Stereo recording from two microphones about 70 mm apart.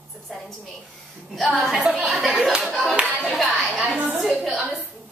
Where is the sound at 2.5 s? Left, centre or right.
Centre.